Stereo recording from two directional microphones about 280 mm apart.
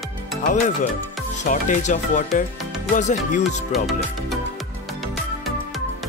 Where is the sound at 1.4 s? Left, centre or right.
Left.